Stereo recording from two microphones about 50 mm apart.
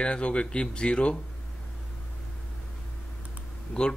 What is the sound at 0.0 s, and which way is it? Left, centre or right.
Speech, left.